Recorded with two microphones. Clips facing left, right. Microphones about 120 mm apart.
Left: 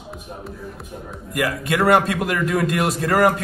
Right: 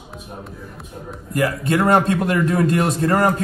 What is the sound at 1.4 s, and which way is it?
A man's voice, 30° right (ahead or behind).